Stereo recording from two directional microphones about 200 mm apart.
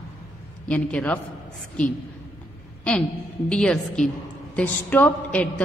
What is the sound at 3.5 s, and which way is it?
A woman's voice, 5° left (ahead or behind).